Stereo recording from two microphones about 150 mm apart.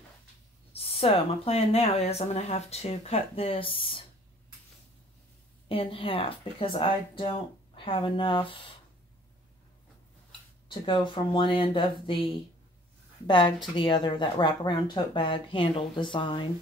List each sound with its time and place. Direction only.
0.7 s speech: 40° left (ahead or behind)
5.7 s speech: 40° left (ahead or behind)
10.7 s speech: 35° left (ahead or behind)
13.3 s speech: 30° left (ahead or behind)